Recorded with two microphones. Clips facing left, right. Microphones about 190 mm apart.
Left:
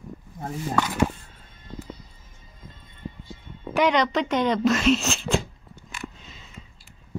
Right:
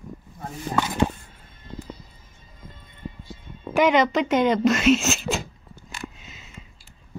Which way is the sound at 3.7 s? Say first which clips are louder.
Right 2 dB; 5° right (ahead or behind).